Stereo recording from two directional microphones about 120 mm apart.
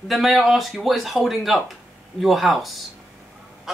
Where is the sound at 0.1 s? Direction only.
Centre (ahead or behind).